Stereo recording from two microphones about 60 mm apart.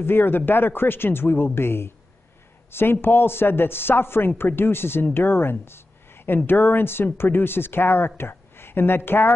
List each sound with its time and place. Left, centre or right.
0.0 s a man's voice: left